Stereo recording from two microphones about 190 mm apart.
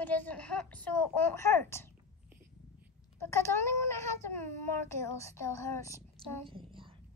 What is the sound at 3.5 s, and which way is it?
Speech, 15° left (ahead or behind).